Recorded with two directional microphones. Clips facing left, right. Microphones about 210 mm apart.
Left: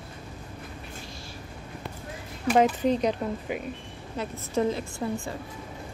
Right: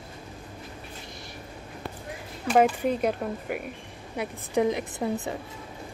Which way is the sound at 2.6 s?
10° right (ahead or behind).